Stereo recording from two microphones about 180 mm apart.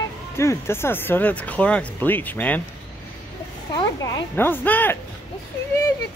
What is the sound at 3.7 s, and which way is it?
Speech, 25° left (ahead or behind).